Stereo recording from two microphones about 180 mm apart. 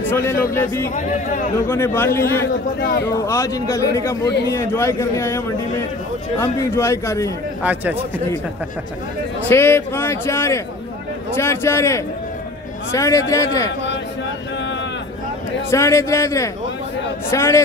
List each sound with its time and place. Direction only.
0.1 s speech: 15° left (ahead or behind)
0.9 s speech: 45° left (ahead or behind)
1.7 s speech: 15° left (ahead or behind)
7.6 s a man's voice: 10° right (ahead or behind)
9.5 s speech: 15° left (ahead or behind)
15.7 s speech: 15° left (ahead or behind)